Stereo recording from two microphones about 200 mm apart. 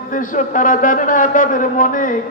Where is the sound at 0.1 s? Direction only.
40° left (ahead or behind).